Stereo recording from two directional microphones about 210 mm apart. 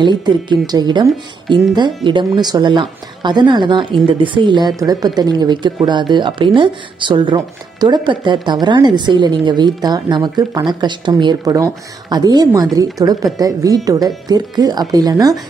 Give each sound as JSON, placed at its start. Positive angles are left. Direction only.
{"t": 0.0, "sound": "speech", "side_deg": -20}
{"t": 2.0, "sound": "speech", "side_deg": -20}